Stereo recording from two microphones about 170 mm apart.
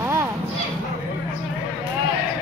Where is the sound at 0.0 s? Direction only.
15° right (ahead or behind).